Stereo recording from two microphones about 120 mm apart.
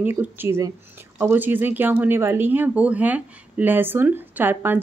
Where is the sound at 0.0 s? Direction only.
15° right (ahead or behind).